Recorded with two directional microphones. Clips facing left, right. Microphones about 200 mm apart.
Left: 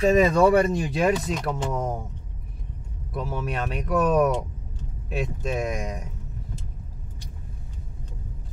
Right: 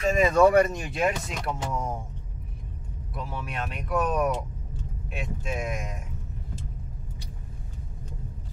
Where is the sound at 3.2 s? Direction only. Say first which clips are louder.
Left 5 dB; 40° left (ahead or behind).